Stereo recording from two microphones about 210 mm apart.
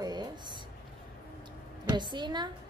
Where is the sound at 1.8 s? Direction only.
20° right (ahead or behind).